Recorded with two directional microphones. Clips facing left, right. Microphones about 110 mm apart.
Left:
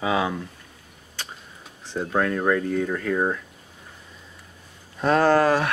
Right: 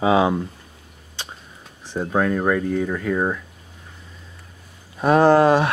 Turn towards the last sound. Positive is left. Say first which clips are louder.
# right 4 dB
turn(degrees=-25)  # may be behind; listen again after turning